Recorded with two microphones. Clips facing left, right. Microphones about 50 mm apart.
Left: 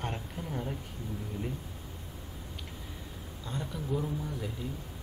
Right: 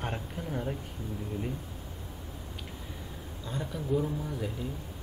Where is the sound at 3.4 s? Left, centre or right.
Centre.